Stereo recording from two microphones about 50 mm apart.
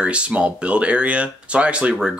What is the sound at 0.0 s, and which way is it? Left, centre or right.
Speech, right.